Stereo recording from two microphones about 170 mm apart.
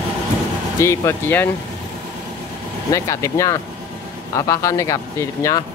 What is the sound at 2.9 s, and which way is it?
Speech, 20° left (ahead or behind).